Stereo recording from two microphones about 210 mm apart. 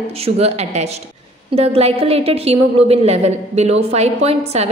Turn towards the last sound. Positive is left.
turn(degrees=-30)  # may be behind; listen again after turning